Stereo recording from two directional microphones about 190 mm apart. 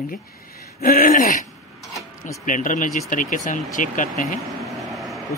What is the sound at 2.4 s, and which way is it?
Speech, 45° left (ahead or behind).